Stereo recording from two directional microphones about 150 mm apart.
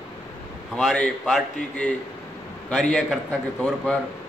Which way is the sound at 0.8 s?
Centre (ahead or behind).